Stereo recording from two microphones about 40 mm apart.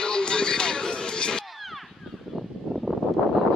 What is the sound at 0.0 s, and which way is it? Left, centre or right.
Music, centre.